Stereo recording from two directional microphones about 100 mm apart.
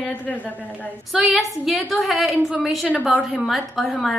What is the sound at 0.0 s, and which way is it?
Speech, 15° left (ahead or behind).